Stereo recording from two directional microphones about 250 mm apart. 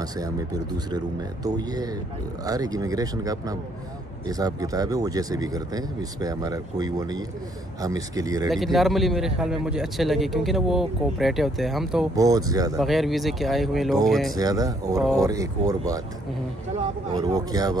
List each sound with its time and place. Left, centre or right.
0.0 s speech: centre
8.5 s a man's voice: centre
12.2 s speech: centre
12.7 s a man's voice: centre
14.3 s speech: centre
17.1 s speech: centre